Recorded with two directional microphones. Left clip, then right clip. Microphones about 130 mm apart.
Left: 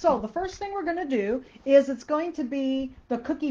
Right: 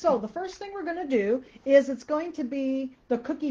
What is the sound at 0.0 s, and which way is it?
A woman's voice, 40° right (ahead or behind).